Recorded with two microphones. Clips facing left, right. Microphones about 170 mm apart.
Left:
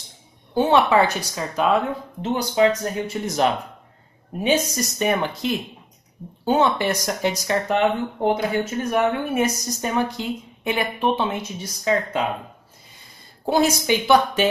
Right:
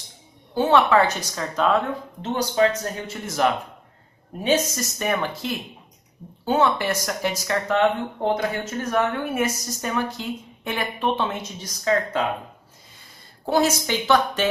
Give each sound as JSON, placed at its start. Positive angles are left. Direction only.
{"t": 0.6, "sound": "a woman's voice", "side_deg": 15}
{"t": 13.5, "sound": "a woman's voice", "side_deg": 15}